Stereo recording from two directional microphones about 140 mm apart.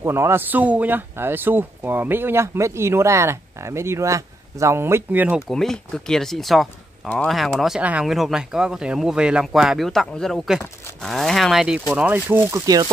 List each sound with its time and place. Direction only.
0.0 s speech: 20° right (ahead or behind)
5.5 s speech: 5° left (ahead or behind); by 12.9 s 25° right (ahead or behind)